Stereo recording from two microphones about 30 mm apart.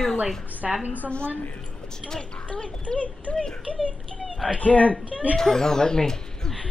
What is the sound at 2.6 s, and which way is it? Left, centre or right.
Speech, left.